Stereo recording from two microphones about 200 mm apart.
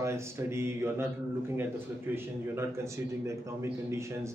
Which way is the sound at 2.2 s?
15° right (ahead or behind).